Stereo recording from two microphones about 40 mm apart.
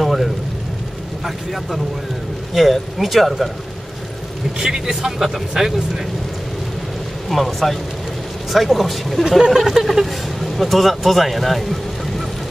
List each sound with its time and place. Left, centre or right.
0.0 s a sound: centre
1.2 s speech: centre
4.6 s speech: centre
7.2 s speech: centre